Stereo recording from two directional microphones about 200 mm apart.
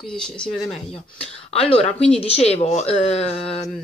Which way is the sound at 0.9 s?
30° left (ahead or behind).